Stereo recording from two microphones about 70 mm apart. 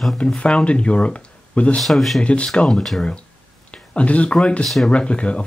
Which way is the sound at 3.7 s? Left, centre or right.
Centre.